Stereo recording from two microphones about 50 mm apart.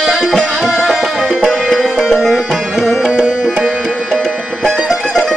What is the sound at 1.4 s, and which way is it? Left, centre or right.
Music, centre.